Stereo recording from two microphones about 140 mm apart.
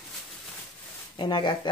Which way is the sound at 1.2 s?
35° left (ahead or behind).